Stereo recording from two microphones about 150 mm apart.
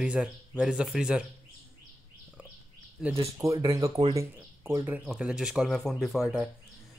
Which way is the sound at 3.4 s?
20° right (ahead or behind).